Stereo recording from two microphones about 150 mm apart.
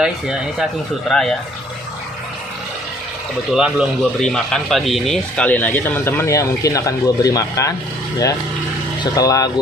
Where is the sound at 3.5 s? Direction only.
5° right (ahead or behind); by 7.7 s 25° left (ahead or behind).